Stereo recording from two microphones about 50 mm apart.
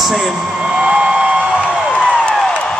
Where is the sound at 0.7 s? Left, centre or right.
Centre.